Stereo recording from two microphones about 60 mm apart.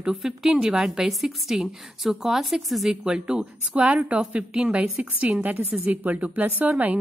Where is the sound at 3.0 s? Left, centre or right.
Centre.